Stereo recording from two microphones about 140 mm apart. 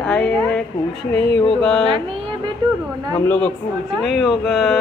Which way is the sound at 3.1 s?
10° left (ahead or behind).